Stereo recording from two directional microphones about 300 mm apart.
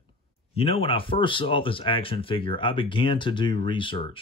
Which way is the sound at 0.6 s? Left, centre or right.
Centre.